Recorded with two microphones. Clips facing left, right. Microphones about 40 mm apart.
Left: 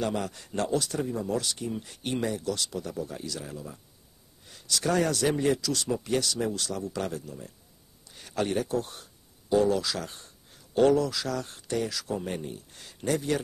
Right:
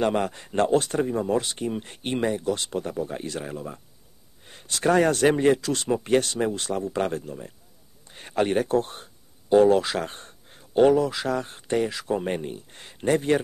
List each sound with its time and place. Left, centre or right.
0.0 s speech: right
8.1 s a sound: right
10.8 s speech: right